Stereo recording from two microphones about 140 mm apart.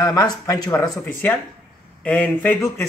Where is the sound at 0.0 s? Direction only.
25° left (ahead or behind).